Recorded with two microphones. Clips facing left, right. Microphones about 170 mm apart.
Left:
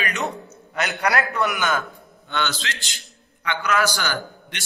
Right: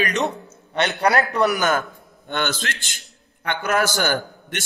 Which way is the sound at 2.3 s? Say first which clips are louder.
Right 2 dB; 50° right (ahead or behind).